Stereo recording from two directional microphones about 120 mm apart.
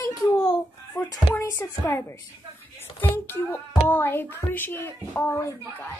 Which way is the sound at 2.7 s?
20° left (ahead or behind).